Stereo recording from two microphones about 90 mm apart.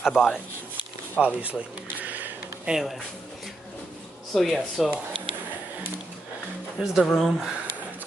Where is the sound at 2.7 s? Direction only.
5° right (ahead or behind).